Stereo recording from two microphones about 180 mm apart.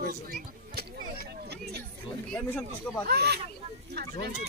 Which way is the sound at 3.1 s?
65° right (ahead or behind).